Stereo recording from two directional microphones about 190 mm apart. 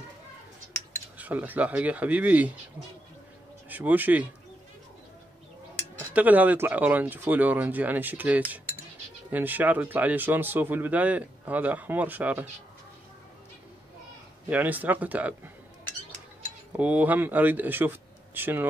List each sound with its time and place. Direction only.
1.1 s speech: 10° right (ahead or behind)
3.6 s speech: 10° right (ahead or behind)
5.9 s speech: 10° right (ahead or behind)
14.5 s speech: 10° right (ahead or behind)
16.7 s speech: 10° right (ahead or behind)